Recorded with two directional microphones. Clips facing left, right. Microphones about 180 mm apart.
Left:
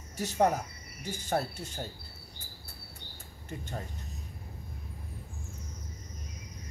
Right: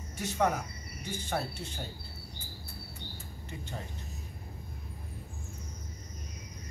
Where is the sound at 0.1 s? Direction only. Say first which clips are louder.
Left 3 dB; 40° left (ahead or behind).